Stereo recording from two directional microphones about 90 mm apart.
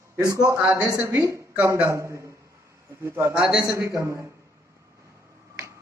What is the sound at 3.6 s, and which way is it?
Speech, 35° right (ahead or behind).